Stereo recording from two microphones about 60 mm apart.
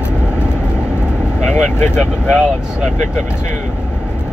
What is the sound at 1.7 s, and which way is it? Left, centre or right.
Vehicle, left.